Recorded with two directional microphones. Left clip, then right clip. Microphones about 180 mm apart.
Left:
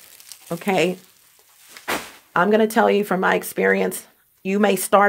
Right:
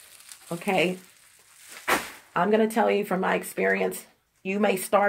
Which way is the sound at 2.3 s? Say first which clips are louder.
Left 6 dB; 45° left (ahead or behind).